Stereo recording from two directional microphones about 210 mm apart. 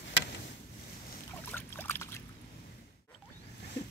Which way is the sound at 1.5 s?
10° left (ahead or behind).